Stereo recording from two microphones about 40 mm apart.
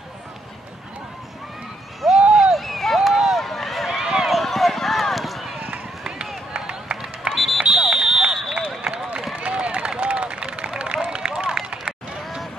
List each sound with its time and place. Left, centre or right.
2.0 s a sound: centre
2.5 s run: centre
6.5 s run: right
7.3 s run: centre
7.7 s run: centre